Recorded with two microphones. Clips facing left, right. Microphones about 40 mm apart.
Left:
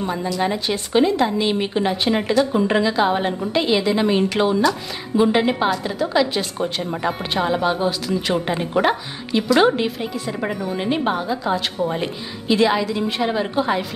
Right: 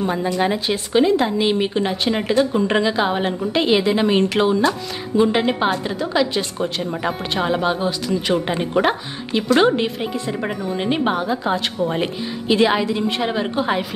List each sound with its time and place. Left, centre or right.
0.4 s a woman's voice: centre
2.8 s a woman's voice: centre